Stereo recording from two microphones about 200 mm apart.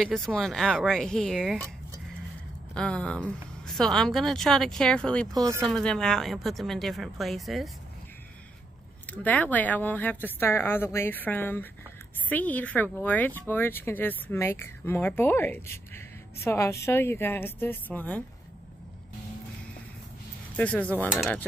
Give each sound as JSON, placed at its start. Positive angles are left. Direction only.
{"t": 0.0, "sound": "speech", "side_deg": 5}
{"t": 2.7, "sound": "speech", "side_deg": 5}
{"t": 5.3, "sound": "speech", "side_deg": -15}
{"t": 5.7, "sound": "speech", "side_deg": 5}
{"t": 9.0, "sound": "speech", "side_deg": 10}
{"t": 20.5, "sound": "speech", "side_deg": 5}